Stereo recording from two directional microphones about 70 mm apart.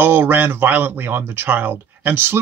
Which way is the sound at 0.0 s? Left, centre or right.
Right.